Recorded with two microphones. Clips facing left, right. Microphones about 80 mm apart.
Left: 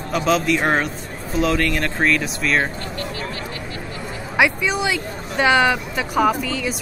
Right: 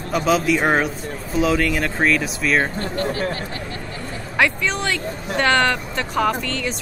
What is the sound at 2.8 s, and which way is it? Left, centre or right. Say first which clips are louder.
Speech: right 5 dB; right.